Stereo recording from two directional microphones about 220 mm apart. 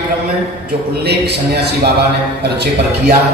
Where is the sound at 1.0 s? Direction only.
45° right (ahead or behind).